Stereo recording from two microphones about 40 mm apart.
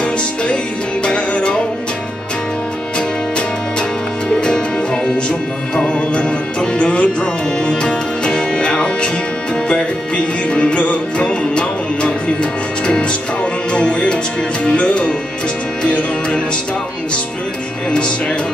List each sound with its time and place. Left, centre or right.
0.0 s music: left
4.4 s music: centre